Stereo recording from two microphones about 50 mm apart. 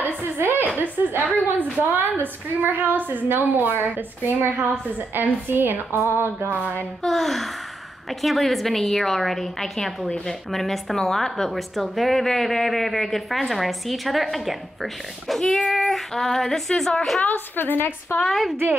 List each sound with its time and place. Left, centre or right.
0.2 s a sound: right
1.8 s a woman's voice: right
6.6 s a woman's voice: right
7.0 s a woman's voice: centre
10.0 s speech: centre
10.5 s a woman's voice: centre
17.3 s a woman's voice: left
18.2 s a woman's voice: centre